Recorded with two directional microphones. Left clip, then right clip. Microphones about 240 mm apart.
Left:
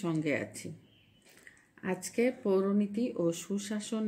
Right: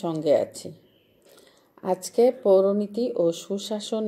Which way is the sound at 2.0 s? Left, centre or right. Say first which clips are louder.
Right 11 dB; left.